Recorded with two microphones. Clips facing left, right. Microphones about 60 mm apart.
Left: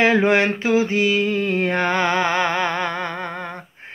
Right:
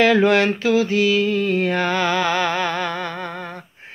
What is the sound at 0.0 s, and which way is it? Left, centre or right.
Mantra, left.